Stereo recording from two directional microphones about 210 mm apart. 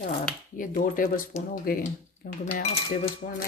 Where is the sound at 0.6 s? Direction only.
40° left (ahead or behind).